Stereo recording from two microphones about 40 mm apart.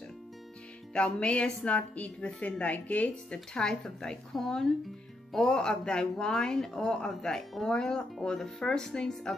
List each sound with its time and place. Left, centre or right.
0.9 s a woman's voice: left
3.5 s speech: centre